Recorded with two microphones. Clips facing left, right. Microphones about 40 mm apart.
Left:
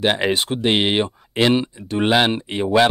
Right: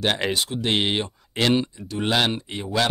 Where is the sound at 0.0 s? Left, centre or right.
Centre.